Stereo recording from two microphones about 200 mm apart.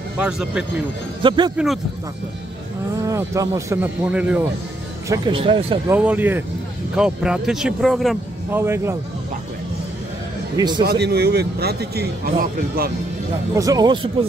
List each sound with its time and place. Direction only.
0.2 s speech: 5° right (ahead or behind)
1.2 s speech: 25° right (ahead or behind)
3.0 s speech: 15° right (ahead or behind)
5.0 s speech: 20° right (ahead or behind)
5.9 s speech: 10° right (ahead or behind)
8.5 s speech: 10° right (ahead or behind)
10.8 s speech: 50° right (ahead or behind)
13.6 s speech: 20° right (ahead or behind)